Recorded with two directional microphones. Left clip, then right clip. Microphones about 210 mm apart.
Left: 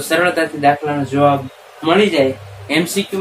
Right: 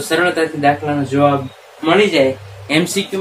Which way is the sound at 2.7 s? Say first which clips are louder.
Right 1 dB; 15° right (ahead or behind).